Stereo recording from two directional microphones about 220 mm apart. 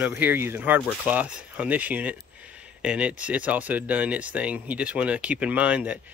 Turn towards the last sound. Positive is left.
turn(degrees=-5)  # may be behind; listen again after turning